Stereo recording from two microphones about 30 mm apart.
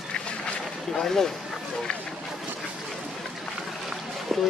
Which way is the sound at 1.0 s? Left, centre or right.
Centre.